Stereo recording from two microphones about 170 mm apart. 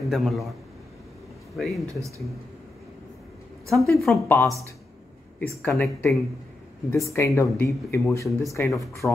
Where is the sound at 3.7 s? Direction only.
Centre (ahead or behind).